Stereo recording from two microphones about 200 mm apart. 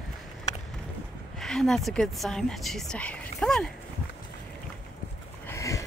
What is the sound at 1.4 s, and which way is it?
Speech, centre (ahead or behind).